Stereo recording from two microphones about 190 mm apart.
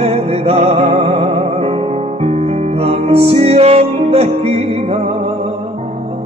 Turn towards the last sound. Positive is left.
turn(degrees=-30)  # may be behind; listen again after turning